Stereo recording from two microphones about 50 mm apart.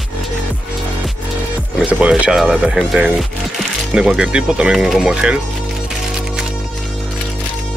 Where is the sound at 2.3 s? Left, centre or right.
Centre.